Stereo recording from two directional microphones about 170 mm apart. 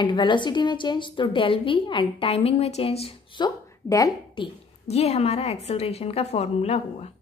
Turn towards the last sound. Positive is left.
turn(degrees=40)  # may be behind; listen again after turning